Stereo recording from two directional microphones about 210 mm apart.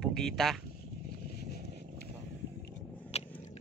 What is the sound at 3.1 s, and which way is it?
Vehicle, 30° left (ahead or behind).